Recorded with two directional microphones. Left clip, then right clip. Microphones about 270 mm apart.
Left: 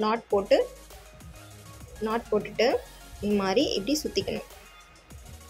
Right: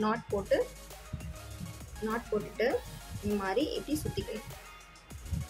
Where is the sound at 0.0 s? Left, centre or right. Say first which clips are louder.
Left 7 dB; centre.